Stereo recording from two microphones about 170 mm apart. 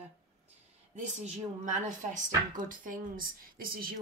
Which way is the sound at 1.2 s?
45° right (ahead or behind).